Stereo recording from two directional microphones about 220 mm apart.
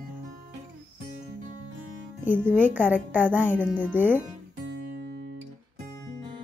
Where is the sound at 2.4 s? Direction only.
10° right (ahead or behind).